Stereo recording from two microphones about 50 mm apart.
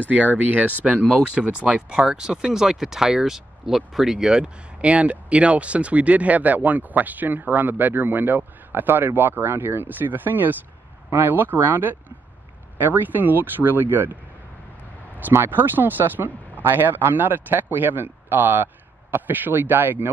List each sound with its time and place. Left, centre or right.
0.1 s speech: right; by 4.5 s centre
4.8 s speech: right
15.3 s speech: right